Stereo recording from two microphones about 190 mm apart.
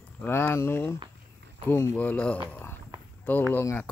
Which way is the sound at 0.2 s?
10° left (ahead or behind).